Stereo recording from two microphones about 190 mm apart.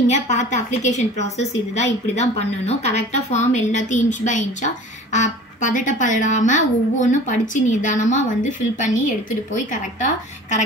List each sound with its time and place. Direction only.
0.1 s a woman's voice: 40° left (ahead or behind)